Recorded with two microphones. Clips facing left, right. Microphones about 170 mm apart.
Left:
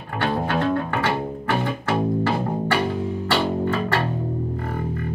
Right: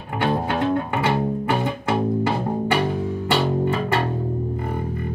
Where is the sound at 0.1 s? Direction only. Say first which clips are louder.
Right 1 dB; 15° right (ahead or behind).